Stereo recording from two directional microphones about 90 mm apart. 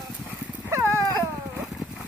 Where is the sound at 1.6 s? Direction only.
5° right (ahead or behind).